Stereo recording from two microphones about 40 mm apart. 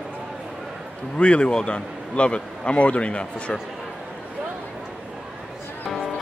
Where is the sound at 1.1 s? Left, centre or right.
Left.